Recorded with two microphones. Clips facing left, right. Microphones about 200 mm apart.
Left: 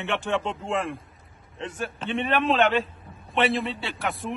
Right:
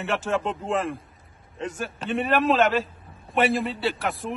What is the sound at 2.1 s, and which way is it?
Speech, 5° right (ahead or behind).